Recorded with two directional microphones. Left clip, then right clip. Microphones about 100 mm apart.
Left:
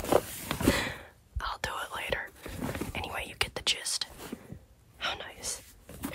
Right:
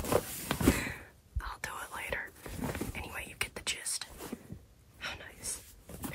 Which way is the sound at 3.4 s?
25° left (ahead or behind).